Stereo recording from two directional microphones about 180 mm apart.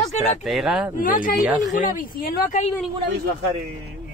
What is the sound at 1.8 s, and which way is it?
Speech, 55° left (ahead or behind).